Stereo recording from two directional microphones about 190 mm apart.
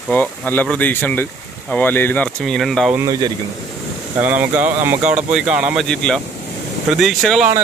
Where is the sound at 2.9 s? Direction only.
15° right (ahead or behind); by 7.5 s centre (ahead or behind).